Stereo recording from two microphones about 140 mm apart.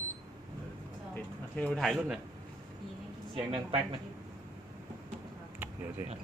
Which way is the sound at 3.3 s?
40° right (ahead or behind).